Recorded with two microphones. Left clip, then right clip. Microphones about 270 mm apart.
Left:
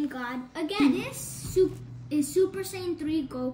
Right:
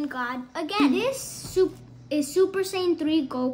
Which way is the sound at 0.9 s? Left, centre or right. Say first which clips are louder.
Right 8 dB; centre.